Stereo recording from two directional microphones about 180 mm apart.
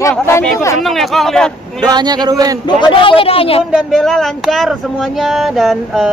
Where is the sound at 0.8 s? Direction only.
Centre (ahead or behind).